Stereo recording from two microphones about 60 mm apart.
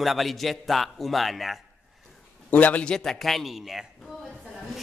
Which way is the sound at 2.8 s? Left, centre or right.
Centre.